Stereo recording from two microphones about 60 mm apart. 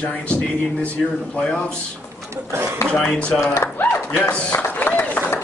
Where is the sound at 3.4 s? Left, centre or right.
Left.